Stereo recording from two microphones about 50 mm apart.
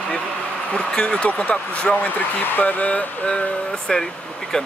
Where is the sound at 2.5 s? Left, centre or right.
Left; by 4.7 s centre.